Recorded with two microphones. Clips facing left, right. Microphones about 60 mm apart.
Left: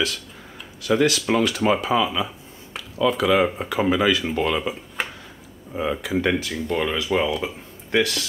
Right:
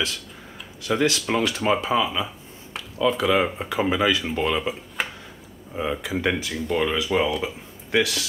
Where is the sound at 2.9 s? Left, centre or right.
Centre.